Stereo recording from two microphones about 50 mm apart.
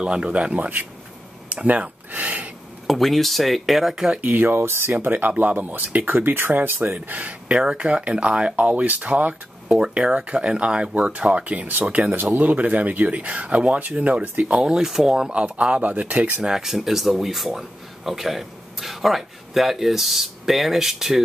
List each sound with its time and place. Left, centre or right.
0.0 s speech: right
1.5 s a sound: right
2.9 s speech: centre
4.2 s speech: right
4.6 s speech: right
14.6 s speech: centre
16.5 s speech: centre